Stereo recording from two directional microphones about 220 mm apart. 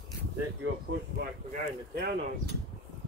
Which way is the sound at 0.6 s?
55° right (ahead or behind).